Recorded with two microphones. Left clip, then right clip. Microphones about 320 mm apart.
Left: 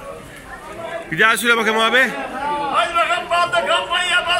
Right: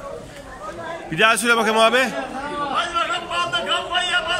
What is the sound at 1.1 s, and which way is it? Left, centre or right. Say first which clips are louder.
A man's voice: left 2 dB; centre.